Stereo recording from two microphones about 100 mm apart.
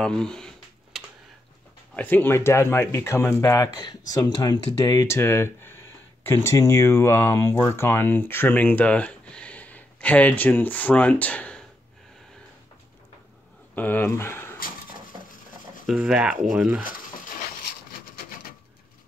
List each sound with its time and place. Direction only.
0.0 s speech: 5° left (ahead or behind)
0.9 s typing: 5° right (ahead or behind)
2.0 s speech: 20° left (ahead or behind)
3.7 s speech: 40° left (ahead or behind)
5.0 s speech: 25° left (ahead or behind)
13.7 s speech: 20° left (ahead or behind)
15.9 s speech: 10° right (ahead or behind)